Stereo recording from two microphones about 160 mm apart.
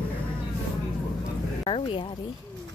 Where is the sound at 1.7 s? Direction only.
35° left (ahead or behind).